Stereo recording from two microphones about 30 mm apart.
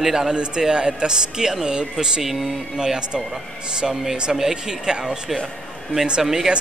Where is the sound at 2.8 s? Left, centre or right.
Right.